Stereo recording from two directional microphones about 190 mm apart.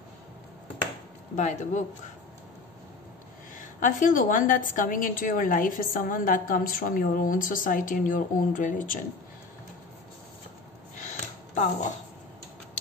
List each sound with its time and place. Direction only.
1.3 s speech: 40° left (ahead or behind)
3.5 s a woman's voice: 45° left (ahead or behind)
11.0 s a sound: 40° left (ahead or behind)